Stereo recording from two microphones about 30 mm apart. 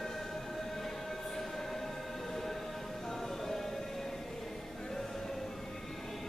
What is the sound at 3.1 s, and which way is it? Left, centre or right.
Music, centre.